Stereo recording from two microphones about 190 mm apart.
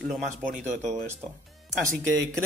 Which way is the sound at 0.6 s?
40° right (ahead or behind).